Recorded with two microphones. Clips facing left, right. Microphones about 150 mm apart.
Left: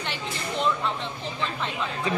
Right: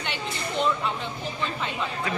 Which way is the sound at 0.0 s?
Centre (ahead or behind).